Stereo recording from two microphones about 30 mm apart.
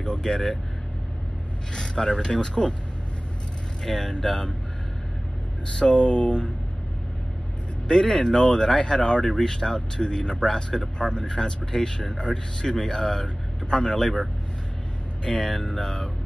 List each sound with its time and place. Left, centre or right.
0.0 s vehicle: left
1.7 s speech: left
3.8 s speech: centre
5.8 s speech: left
7.9 s speech: left
15.2 s speech: left